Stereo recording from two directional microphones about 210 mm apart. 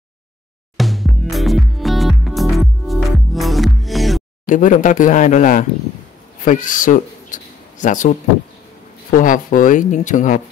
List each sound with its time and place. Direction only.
0.7 s music: centre (ahead or behind)
4.5 s speech: 40° left (ahead or behind)